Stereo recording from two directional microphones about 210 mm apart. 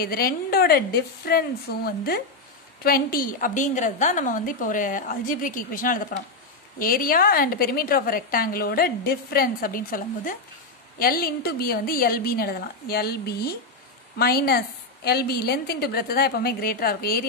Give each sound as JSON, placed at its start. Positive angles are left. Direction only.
{"t": 0.0, "sound": "a woman's voice", "side_deg": 45}